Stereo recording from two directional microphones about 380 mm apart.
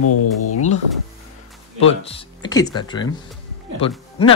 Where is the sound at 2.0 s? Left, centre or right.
Centre.